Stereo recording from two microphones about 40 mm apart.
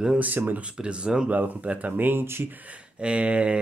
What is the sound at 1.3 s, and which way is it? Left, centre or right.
Speech, right.